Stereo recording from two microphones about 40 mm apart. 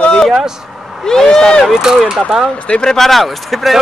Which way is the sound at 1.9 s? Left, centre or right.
Centre.